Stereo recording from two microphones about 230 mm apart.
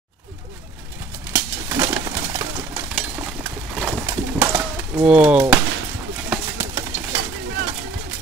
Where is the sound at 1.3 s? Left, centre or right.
Centre.